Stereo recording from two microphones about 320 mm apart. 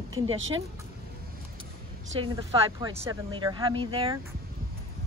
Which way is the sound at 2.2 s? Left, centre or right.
Centre.